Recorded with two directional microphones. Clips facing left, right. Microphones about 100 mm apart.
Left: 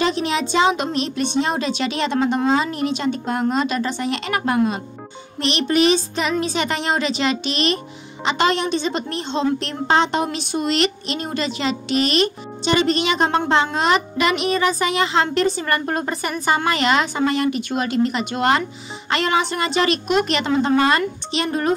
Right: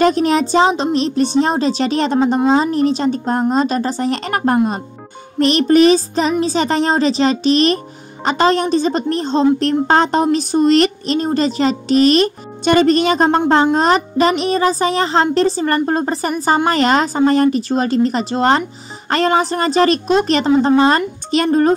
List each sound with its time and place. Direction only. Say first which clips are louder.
0.0 s a woman's voice: right 7 dB; 45° right (ahead or behind)